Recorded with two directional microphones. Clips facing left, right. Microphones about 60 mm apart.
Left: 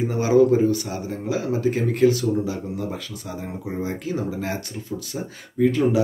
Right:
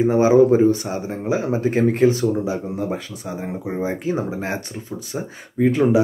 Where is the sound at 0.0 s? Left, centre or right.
Right.